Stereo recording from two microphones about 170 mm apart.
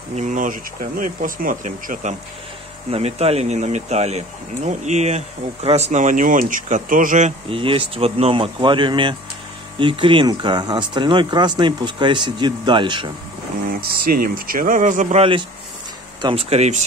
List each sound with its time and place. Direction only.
0.1 s speech: 45° right (ahead or behind)
2.9 s speech: 40° right (ahead or behind)
13.7 s speech: 60° right (ahead or behind); by 15.2 s 45° right (ahead or behind)
16.2 s speech: 30° right (ahead or behind)